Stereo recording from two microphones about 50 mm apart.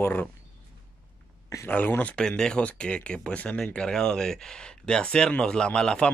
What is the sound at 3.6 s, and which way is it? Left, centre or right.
Speech, centre.